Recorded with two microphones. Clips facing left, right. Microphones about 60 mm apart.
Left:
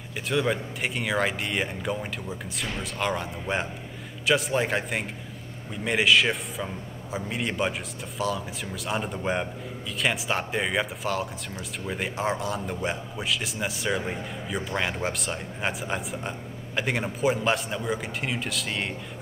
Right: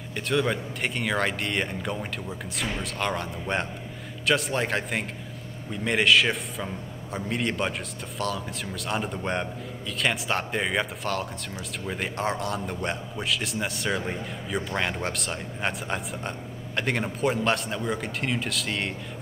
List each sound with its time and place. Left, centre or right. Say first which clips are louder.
0.3 s a man's voice: even; centre